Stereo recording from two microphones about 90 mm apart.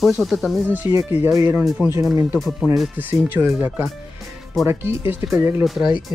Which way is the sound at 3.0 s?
20° right (ahead or behind).